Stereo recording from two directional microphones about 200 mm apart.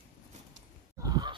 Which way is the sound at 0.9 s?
20° right (ahead or behind).